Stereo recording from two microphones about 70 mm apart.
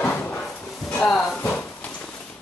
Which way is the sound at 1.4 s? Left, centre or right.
Left.